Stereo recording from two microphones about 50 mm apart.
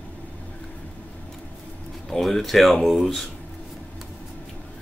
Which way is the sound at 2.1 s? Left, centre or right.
Centre.